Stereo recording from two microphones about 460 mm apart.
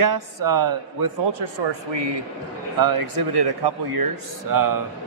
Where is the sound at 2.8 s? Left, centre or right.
Right.